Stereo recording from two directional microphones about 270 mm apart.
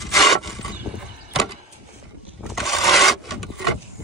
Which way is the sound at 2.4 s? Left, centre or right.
Centre.